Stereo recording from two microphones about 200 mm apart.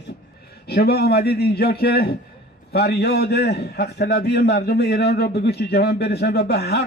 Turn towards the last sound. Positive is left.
turn(degrees=55)  # may be behind; listen again after turning